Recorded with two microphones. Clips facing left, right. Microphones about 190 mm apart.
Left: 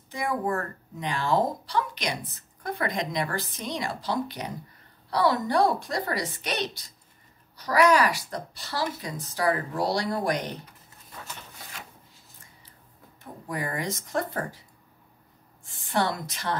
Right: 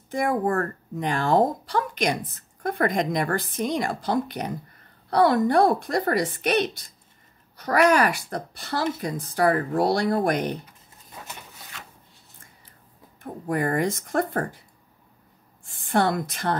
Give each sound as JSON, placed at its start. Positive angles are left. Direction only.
{"t": 0.1, "sound": "speech", "side_deg": -50}
{"t": 13.2, "sound": "speech", "side_deg": -50}
{"t": 15.6, "sound": "a woman's voice", "side_deg": -50}